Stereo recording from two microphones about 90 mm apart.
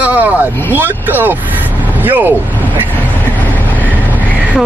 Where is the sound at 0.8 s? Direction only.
20° right (ahead or behind).